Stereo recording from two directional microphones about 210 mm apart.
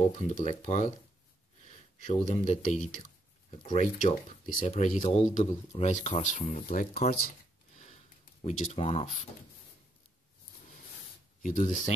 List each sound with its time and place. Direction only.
0.0 s speech: 35° left (ahead or behind)
2.0 s speech: 35° left (ahead or behind)
4.0 s speech: 40° left (ahead or behind)
8.5 s speech: 30° left (ahead or behind)
11.4 s speech: 35° left (ahead or behind)